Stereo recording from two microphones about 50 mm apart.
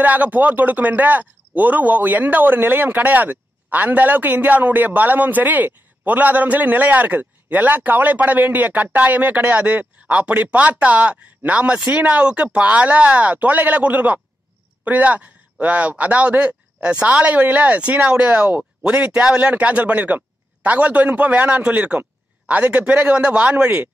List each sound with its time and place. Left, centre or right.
0.0 s a man's voice: right